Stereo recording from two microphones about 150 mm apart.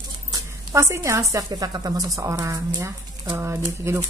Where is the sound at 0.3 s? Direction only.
20° right (ahead or behind).